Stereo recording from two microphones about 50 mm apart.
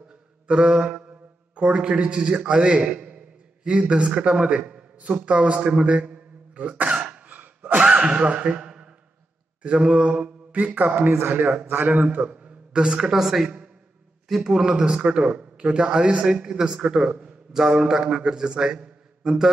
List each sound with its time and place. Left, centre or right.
0.5 s a man's voice: centre
5.9 s throat clearing: right
7.2 s a sound: right
7.9 s a man's voice: right
10.5 s speech: right
12.2 s a man's voice: right